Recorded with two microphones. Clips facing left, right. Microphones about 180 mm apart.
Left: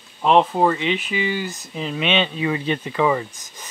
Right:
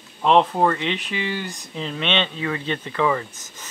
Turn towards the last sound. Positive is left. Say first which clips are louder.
# left 3 dB
turn(degrees=15)  # may be behind; listen again after turning